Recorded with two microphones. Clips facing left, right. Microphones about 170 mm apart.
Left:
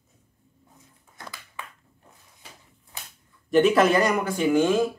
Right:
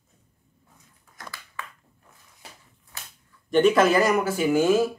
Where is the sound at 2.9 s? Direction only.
20° left (ahead or behind).